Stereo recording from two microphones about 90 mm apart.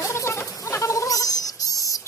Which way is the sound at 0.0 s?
30° left (ahead or behind).